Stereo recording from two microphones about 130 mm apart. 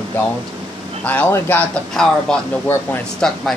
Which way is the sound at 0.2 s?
15° left (ahead or behind).